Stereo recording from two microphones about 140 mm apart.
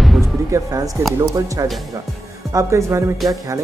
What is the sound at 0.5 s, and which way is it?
Speech, 25° right (ahead or behind).